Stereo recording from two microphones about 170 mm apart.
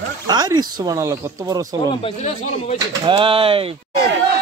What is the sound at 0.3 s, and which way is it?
A man's voice, 25° right (ahead or behind).